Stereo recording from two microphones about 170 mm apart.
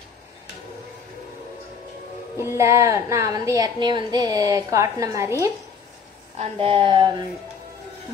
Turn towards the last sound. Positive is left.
turn(degrees=-30)  # may be behind; listen again after turning